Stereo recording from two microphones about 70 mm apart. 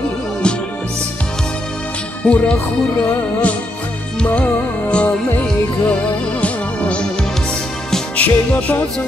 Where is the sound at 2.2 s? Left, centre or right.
Centre.